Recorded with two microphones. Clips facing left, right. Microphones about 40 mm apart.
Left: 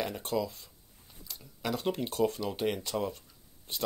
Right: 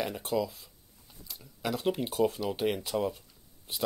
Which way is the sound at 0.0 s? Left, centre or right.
Centre.